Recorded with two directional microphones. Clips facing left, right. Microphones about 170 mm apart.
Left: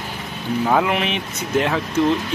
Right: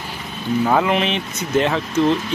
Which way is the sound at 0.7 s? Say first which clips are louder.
Even; 5° left (ahead or behind).